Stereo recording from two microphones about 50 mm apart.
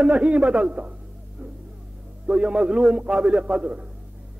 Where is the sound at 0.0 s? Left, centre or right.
Right.